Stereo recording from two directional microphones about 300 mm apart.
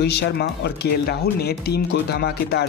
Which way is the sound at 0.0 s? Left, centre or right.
Left.